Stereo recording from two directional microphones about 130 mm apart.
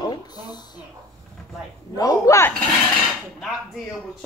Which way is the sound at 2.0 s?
25° left (ahead or behind).